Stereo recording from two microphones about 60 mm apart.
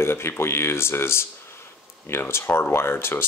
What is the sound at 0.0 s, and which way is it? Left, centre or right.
Speech, left.